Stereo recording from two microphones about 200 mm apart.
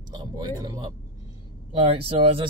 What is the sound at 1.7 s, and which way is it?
Speech, 25° right (ahead or behind).